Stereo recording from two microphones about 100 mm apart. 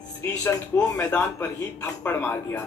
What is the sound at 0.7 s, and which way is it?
Speech, 25° left (ahead or behind).